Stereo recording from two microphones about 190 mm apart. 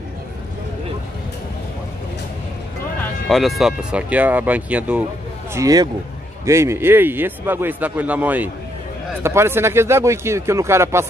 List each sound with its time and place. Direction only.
3.3 s speech: centre (ahead or behind)
5.5 s speech: 20° right (ahead or behind)